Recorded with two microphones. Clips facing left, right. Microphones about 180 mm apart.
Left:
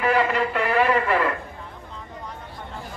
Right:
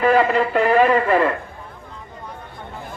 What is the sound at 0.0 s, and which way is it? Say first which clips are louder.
Speech: right 5 dB; 35° right (ahead or behind).